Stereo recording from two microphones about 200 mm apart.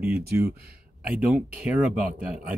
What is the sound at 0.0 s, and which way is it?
Speech, 50° right (ahead or behind).